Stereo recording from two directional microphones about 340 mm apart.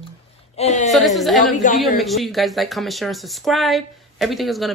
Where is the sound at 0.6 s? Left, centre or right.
Centre.